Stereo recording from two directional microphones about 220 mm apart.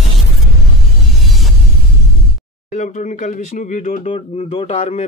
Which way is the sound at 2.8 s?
35° left (ahead or behind).